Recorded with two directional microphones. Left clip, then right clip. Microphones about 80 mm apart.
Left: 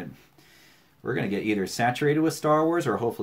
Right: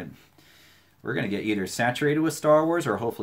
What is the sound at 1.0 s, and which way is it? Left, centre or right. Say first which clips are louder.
Speech: even; right.